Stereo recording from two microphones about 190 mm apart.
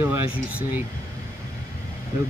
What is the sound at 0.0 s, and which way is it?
Speech, 10° right (ahead or behind).